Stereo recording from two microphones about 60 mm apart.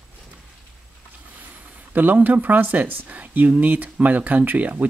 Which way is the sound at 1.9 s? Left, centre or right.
Right.